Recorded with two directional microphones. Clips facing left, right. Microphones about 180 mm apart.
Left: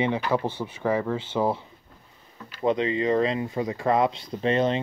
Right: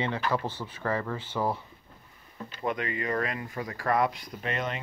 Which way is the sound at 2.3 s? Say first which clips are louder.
Right 3 dB; 25° right (ahead or behind).